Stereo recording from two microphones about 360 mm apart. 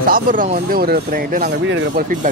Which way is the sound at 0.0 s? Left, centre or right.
Right.